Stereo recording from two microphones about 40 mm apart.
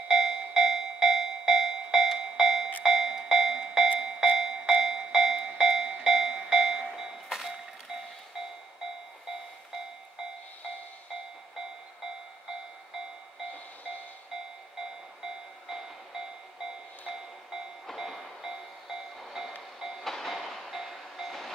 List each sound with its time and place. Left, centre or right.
0.1 s music: centre
5.6 s a sound: centre
7.0 s train: centre
15.7 s train: centre
17.9 s train: centre
20.0 s train: centre